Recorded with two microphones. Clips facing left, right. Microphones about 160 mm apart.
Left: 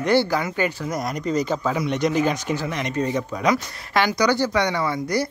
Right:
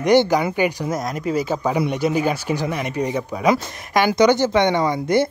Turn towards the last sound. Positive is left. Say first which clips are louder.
# right 5 dB
turn(degrees=-25)  # may be behind; listen again after turning